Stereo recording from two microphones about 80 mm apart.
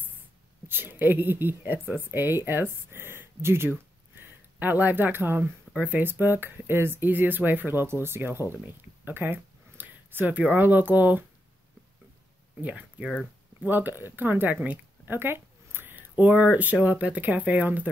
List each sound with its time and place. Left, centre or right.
0.7 s speech: right
13.1 s a sound: centre
13.7 s a woman's voice: right